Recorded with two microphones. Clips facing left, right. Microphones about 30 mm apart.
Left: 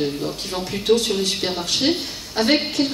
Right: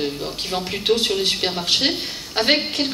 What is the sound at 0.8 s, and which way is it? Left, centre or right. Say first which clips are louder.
A woman's voice: left 1 dB; right.